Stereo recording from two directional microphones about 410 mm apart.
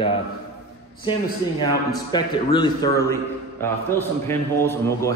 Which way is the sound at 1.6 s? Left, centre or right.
Centre.